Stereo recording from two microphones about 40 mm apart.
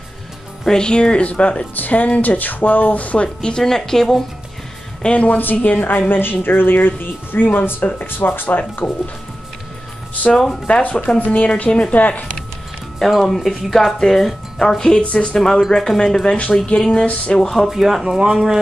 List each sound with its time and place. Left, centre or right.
0.7 s speech: left
3.3 s speech: centre
5.0 s speech: left
5.4 s speech: left
8.8 s speech: left
10.3 s speech: centre
10.7 s speech: left
11.1 s speech: left
11.4 s speech: left
13.2 s speech: centre; by 17.0 s left
17.0 s speech: left
17.4 s speech: centre
17.6 s speech: centre